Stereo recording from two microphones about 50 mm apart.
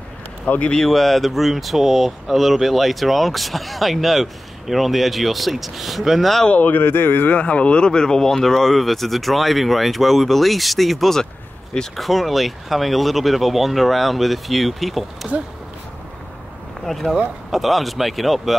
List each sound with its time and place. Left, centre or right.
0.5 s speech: left
0.8 s speech: centre
6.5 s speech: left
7.2 s speech: left; by 15.0 s centre
16.8 s speech: centre